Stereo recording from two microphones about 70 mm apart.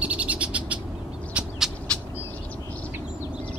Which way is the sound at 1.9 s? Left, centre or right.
Centre.